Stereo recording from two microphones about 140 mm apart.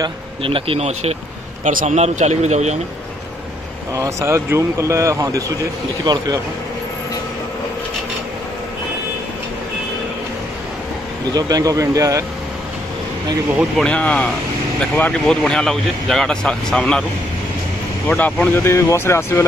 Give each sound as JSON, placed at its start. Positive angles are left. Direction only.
{"t": 0.4, "sound": "speech", "side_deg": -40}
{"t": 1.6, "sound": "a man's voice", "side_deg": -70}
{"t": 2.0, "sound": "speech", "side_deg": -55}
{"t": 3.9, "sound": "speech", "side_deg": -25}
{"t": 11.3, "sound": "speech", "side_deg": -25}
{"t": 13.8, "sound": "speech", "side_deg": 10}
{"t": 18.0, "sound": "speech", "side_deg": 10}